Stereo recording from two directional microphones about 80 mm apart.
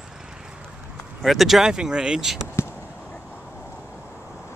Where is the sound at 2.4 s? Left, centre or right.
Left.